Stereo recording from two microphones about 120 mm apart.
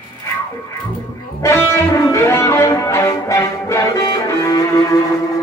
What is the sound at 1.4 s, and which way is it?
Music, 25° left (ahead or behind).